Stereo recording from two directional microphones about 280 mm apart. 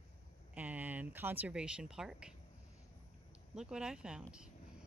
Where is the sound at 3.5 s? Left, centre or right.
Centre.